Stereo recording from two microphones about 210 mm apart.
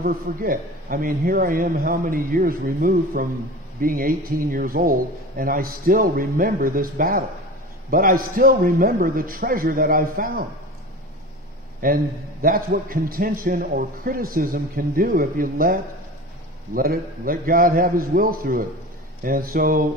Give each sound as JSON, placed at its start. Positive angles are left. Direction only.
{"t": 0.0, "sound": "a man's voice", "side_deg": -45}
{"t": 11.8, "sound": "a man's voice", "side_deg": -45}